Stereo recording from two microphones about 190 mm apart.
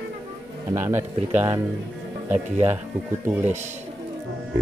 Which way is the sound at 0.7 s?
10° right (ahead or behind).